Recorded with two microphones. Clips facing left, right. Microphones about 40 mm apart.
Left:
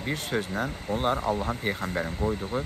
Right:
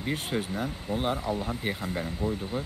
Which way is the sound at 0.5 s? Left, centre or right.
Left.